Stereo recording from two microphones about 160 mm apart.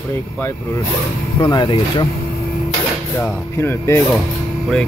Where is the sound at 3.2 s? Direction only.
15° left (ahead or behind).